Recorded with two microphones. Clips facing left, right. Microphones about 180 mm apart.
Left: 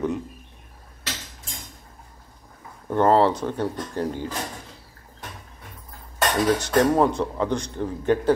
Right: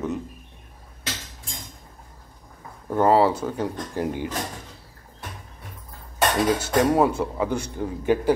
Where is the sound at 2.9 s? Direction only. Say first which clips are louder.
Even; 5° right (ahead or behind).